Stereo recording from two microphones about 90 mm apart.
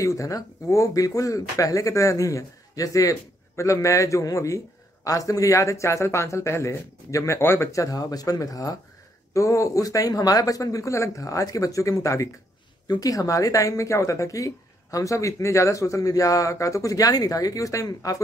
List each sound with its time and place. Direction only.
0.0 s speech: 35° left (ahead or behind)